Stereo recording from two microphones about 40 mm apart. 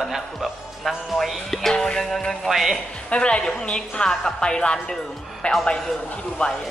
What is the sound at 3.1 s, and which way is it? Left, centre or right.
A woman's voice, left.